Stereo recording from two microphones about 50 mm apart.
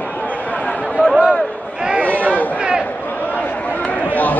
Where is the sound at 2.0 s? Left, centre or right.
Right.